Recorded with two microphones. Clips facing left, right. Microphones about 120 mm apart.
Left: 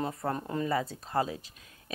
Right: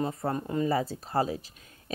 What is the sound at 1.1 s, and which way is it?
Speech, 35° right (ahead or behind).